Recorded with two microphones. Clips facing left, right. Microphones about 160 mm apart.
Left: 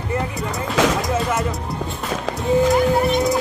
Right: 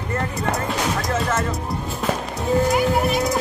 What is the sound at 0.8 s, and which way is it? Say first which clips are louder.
Music: left 7 dB; 90° left.